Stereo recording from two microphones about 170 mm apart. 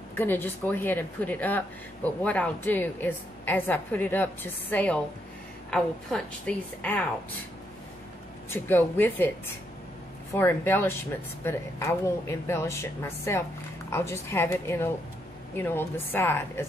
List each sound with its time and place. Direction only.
0.1 s a woman's voice: 10° left (ahead or behind)
8.5 s a woman's voice: 10° left (ahead or behind)
10.3 s a woman's voice: 15° left (ahead or behind)